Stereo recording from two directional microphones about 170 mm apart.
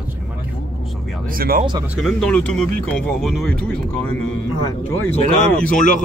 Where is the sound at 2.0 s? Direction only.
5° left (ahead or behind).